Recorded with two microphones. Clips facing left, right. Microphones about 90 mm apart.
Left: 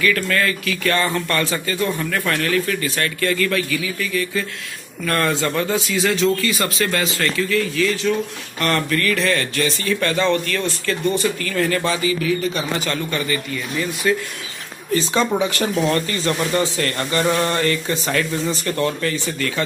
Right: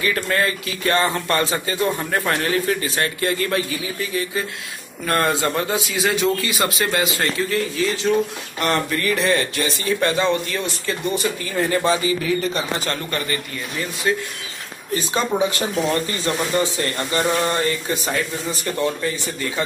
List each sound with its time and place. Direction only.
0.0 s a man's voice: 25° right (ahead or behind)
7.2 s speech: 30° right (ahead or behind)
15.3 s a man's voice: 20° right (ahead or behind)